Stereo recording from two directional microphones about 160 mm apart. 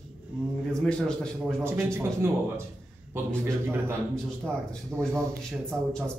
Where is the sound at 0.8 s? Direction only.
5° left (ahead or behind).